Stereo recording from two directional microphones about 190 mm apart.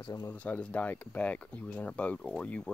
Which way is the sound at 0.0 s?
20° left (ahead or behind).